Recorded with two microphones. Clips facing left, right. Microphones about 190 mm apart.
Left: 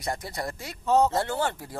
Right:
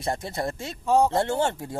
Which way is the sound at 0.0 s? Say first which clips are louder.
Right 4 dB; 25° right (ahead or behind).